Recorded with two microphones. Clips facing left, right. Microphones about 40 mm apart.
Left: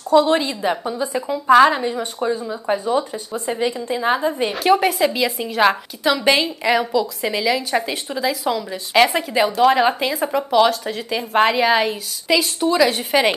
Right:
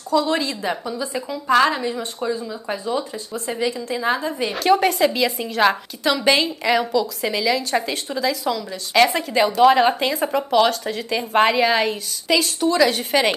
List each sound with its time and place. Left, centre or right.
0.1 s a woman's voice: left
0.4 s speech: centre
0.8 s a woman's voice: left
3.3 s a woman's voice: centre
4.5 s a woman's voice: centre